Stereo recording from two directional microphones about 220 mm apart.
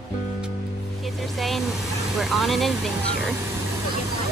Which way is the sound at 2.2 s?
Centre (ahead or behind).